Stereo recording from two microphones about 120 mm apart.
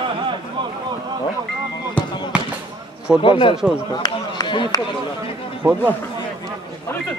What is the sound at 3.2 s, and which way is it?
Speech, 45° left (ahead or behind).